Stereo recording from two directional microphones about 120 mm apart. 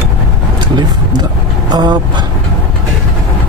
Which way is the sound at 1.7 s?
35° right (ahead or behind).